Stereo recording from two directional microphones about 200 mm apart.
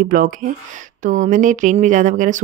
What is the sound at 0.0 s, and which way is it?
A woman's voice, 45° right (ahead or behind).